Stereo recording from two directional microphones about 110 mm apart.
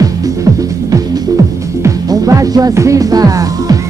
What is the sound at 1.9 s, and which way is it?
Music, 30° right (ahead or behind).